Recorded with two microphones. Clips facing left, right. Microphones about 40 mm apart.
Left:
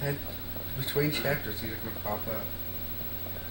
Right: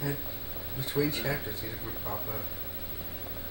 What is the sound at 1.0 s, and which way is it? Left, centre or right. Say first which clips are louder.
Speech: left 1 dB; left.